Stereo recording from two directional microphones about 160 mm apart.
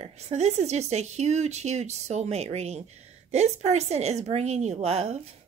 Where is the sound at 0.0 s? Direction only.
45° right (ahead or behind).